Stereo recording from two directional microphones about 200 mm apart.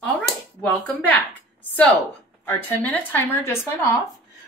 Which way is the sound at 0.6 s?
5° left (ahead or behind).